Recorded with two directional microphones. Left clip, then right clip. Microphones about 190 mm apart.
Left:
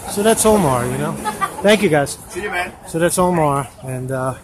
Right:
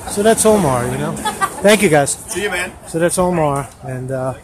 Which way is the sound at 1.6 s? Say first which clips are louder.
Right 2 dB; 10° right (ahead or behind).